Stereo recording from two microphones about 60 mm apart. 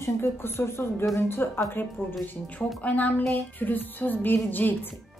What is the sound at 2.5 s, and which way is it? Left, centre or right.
Speech, left.